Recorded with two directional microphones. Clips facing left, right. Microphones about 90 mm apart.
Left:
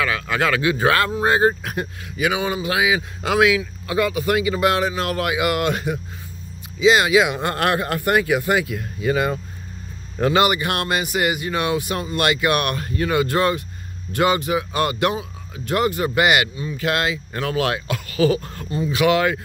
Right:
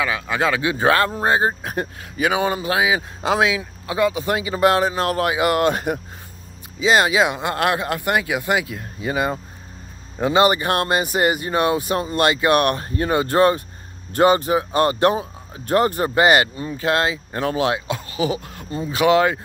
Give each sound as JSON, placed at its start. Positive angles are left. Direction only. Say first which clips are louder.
{"t": 0.0, "sound": "speech", "louder": "even", "side_deg": -20}
{"t": 7.5, "sound": "a man's voice", "louder": "even", "side_deg": -20}
{"t": 10.4, "sound": "speech", "louder": "right 3 dB", "side_deg": -30}
{"t": 18.7, "sound": "speech", "louder": "right 1 dB", "side_deg": -30}